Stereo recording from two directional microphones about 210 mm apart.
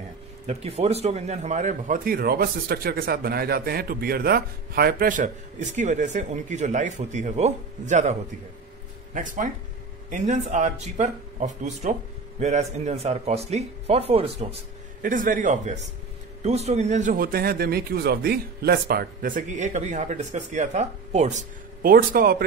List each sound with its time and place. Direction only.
0.5 s speech: 30° right (ahead or behind)
15.0 s speech: 40° right (ahead or behind)